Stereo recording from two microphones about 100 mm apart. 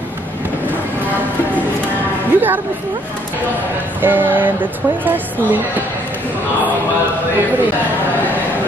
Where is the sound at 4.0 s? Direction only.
20° right (ahead or behind).